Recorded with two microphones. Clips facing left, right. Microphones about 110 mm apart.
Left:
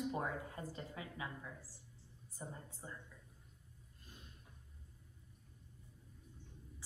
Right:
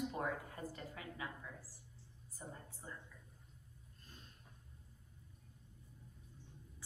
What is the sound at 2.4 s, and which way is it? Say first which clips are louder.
Speech: left 2 dB; 20° left (ahead or behind).